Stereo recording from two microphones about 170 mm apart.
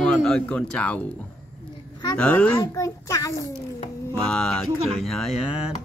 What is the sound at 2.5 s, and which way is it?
Speech, 15° left (ahead or behind).